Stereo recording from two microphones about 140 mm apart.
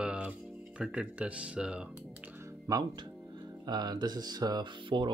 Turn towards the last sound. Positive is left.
turn(degrees=-35)  # may be behind; listen again after turning